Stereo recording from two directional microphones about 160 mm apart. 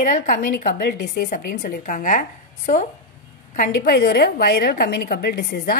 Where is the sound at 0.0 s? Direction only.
55° left (ahead or behind).